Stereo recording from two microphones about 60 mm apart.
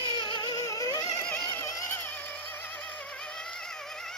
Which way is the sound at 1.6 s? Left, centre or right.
Left.